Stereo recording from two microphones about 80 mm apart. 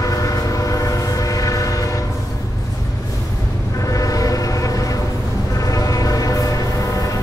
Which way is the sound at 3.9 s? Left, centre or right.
Left.